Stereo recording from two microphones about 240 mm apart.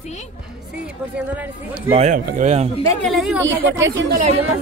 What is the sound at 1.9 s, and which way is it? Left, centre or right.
Speech, right.